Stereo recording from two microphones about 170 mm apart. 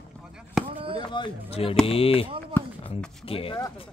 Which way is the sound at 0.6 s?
30° right (ahead or behind).